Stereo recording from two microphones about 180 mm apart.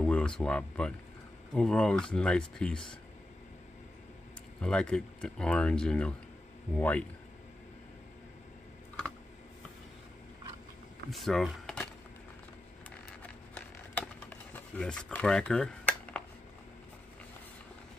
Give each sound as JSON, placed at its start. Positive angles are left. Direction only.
{"t": 0.0, "sound": "speech", "side_deg": 5}
{"t": 4.6, "sound": "a man's voice", "side_deg": 5}
{"t": 11.1, "sound": "speech", "side_deg": 0}
{"t": 13.2, "sound": "a sound", "side_deg": 10}